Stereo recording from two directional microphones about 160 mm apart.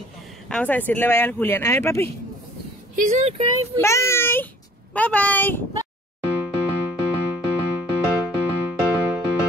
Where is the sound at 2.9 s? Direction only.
50° right (ahead or behind).